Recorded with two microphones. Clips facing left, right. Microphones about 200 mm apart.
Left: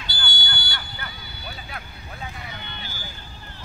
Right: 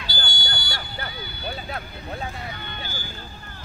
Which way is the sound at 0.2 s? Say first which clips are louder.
Right 1 dB; 40° right (ahead or behind).